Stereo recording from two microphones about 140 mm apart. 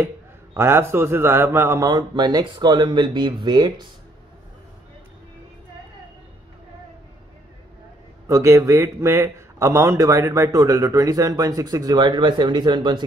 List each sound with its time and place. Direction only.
0.6 s a man's voice: 20° right (ahead or behind)
8.3 s a man's voice: 20° right (ahead or behind)